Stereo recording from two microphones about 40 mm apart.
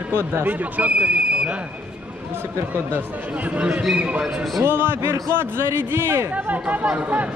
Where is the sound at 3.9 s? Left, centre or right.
Right.